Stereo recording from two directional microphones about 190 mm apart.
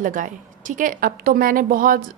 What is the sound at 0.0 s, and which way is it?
A woman's voice, 45° right (ahead or behind).